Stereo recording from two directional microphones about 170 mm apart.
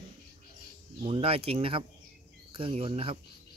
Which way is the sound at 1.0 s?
35° right (ahead or behind).